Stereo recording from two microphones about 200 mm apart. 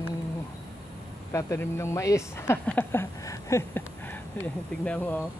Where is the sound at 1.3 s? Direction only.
15° left (ahead or behind).